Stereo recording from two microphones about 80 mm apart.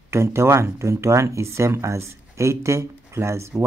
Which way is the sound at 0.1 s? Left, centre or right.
Right.